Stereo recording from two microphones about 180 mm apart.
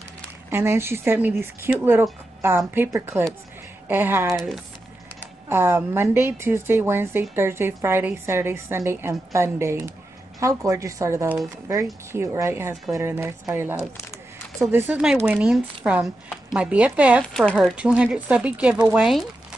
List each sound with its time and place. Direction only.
0.5 s a woman's voice: 15° right (ahead or behind)
5.5 s a woman's voice: 15° right (ahead or behind)
17.2 s speech: 5° left (ahead or behind)